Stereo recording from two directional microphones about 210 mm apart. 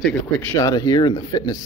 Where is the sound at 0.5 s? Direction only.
20° left (ahead or behind).